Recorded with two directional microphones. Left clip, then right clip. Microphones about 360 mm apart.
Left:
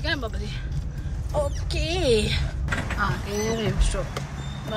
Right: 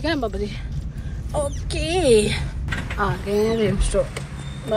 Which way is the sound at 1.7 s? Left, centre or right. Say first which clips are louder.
Right 7 dB; centre.